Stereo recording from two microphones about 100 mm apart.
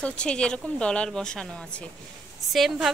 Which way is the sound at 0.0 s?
10° left (ahead or behind).